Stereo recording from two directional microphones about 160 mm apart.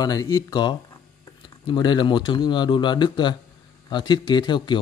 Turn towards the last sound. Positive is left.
turn(degrees=30)  # may be behind; listen again after turning